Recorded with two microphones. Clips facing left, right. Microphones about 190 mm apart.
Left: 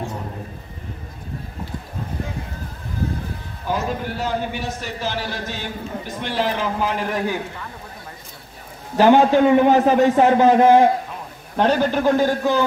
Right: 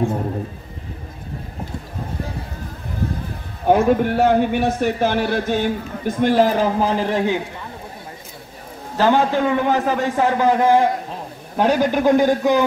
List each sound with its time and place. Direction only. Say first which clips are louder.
3.6 s speech: right 10 dB; 60° right (ahead or behind); by 7.3 s 25° right (ahead or behind)
8.9 s a man's voice: left 3 dB; 15° left (ahead or behind)
11.5 s a man's voice: right 1 dB; 10° right (ahead or behind)